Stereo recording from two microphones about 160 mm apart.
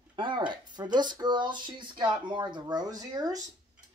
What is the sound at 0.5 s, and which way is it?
Speech, 30° right (ahead or behind).